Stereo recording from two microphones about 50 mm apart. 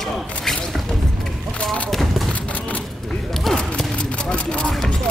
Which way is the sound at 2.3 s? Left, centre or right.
Left.